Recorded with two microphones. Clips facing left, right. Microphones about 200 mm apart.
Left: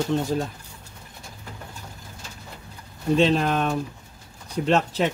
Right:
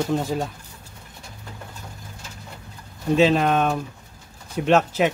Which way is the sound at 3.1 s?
Centre (ahead or behind).